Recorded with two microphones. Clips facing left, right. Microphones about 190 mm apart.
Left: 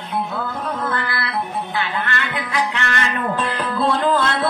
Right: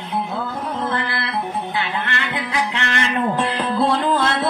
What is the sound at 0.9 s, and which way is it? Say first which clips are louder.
Music: even; 20° right (ahead or behind).